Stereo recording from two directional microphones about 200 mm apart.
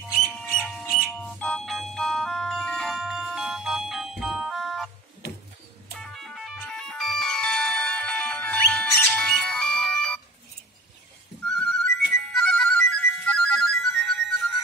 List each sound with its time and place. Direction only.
0.7 s music: 5° left (ahead or behind)
5.9 s music: centre (ahead or behind)
11.5 s music: 5° left (ahead or behind)